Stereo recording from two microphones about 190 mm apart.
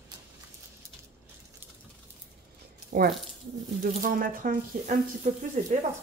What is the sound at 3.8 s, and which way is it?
Speech, 45° right (ahead or behind).